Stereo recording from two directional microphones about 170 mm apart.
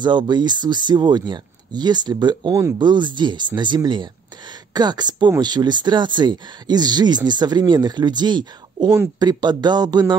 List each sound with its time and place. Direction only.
0.0 s speech: 25° right (ahead or behind)